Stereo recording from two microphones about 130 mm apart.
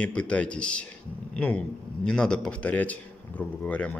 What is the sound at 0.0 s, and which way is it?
Speech, 10° left (ahead or behind).